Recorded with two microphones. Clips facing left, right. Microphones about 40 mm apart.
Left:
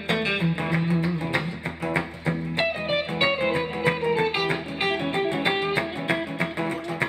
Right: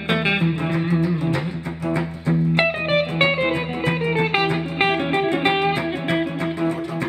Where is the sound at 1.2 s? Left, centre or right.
Left.